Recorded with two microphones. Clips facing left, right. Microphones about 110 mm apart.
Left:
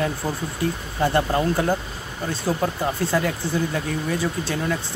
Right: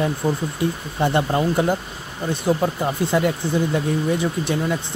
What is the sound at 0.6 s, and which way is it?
Speech, 20° right (ahead or behind).